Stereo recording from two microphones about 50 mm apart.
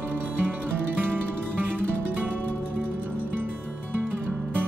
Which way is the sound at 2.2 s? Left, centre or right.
Right.